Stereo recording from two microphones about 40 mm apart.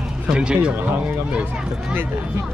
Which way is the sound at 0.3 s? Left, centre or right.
Centre.